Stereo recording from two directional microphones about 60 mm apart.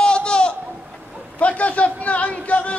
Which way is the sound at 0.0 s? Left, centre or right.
Centre.